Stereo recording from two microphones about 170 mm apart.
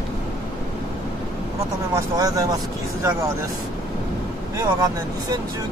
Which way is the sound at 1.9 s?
20° right (ahead or behind).